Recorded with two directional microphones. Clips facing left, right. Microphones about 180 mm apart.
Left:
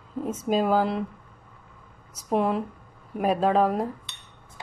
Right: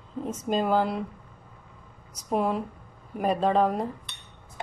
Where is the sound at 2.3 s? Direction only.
Centre (ahead or behind).